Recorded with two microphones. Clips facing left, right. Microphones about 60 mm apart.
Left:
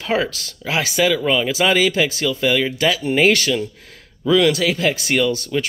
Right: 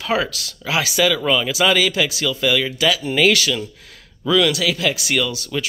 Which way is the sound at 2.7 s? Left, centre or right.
Left.